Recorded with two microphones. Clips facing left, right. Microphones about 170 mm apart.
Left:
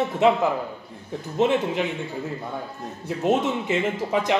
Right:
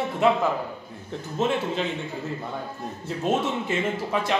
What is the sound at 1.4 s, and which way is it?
Speech, 15° left (ahead or behind).